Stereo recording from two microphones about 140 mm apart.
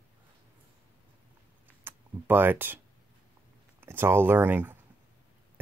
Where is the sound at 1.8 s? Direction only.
15° right (ahead or behind).